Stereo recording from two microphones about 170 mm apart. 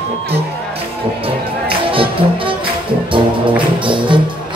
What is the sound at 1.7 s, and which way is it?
Music, 30° right (ahead or behind).